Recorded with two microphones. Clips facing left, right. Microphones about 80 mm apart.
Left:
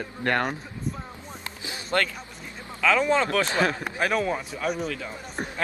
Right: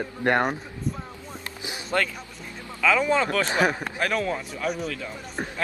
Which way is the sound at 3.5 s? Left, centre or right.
Centre.